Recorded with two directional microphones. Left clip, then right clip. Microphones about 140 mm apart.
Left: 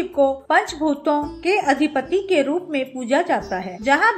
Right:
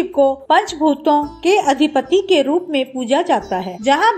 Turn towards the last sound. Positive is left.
turn(degrees=-30)  # may be behind; listen again after turning